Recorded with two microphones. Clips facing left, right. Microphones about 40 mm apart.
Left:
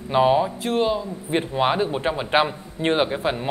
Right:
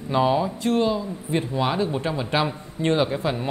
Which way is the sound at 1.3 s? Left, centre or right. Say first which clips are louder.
Left 3 dB; left.